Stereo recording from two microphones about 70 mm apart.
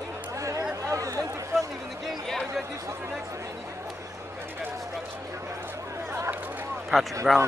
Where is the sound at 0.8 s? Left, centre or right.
Right.